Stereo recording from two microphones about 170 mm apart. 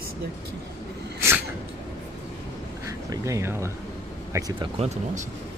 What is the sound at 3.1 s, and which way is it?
Speech, 20° right (ahead or behind).